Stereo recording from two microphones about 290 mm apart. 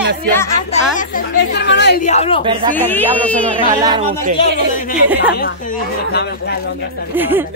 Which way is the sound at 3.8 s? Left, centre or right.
Centre.